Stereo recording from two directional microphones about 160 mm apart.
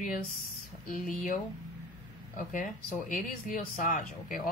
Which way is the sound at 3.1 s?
55° left (ahead or behind).